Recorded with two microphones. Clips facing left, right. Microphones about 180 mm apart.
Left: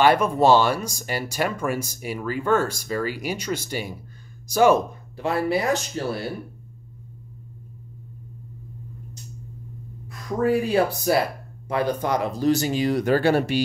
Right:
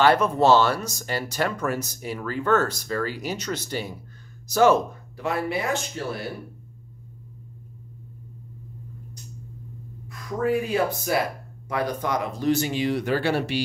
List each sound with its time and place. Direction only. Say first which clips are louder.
0.0 s speech: left 1 dB; 15° left (ahead or behind)
5.1 s speech: left 4 dB; 30° left (ahead or behind)
10.4 s speech: left 3 dB; 35° left (ahead or behind)